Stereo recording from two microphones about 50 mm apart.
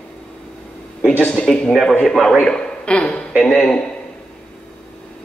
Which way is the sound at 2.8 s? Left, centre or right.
Left.